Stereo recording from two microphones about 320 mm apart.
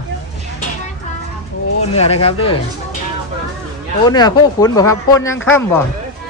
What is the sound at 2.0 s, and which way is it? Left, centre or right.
Speech, centre.